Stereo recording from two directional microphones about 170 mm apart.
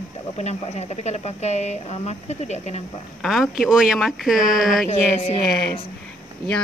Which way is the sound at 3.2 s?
Centre (ahead or behind).